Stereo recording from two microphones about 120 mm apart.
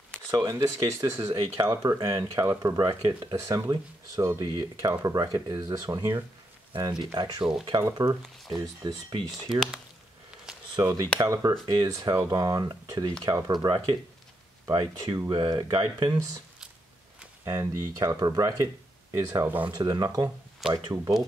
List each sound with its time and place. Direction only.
0.4 s speech: 30° right (ahead or behind)
9.5 s speech: 5° right (ahead or behind)
10.8 s speech: 30° right (ahead or behind)
17.5 s speech: 20° right (ahead or behind)